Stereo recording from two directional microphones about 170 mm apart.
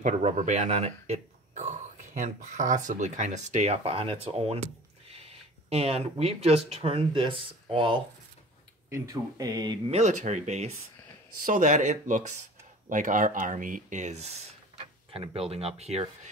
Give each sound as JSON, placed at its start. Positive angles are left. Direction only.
{"t": 0.0, "sound": "speech", "side_deg": -45}
{"t": 9.8, "sound": "speech", "side_deg": -45}